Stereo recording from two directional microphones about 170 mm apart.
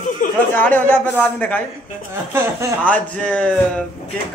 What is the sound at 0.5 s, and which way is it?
A woman's voice, 10° left (ahead or behind).